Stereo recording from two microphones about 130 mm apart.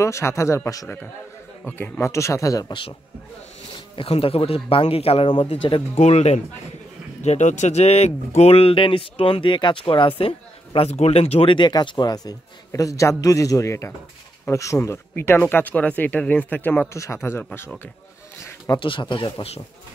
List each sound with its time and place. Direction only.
0.0 s speech: 20° left (ahead or behind)
3.7 s speech: 45° left (ahead or behind)
5.9 s speech: 55° left (ahead or behind); by 17.5 s 20° left (ahead or behind)
18.8 s speech: 40° left (ahead or behind)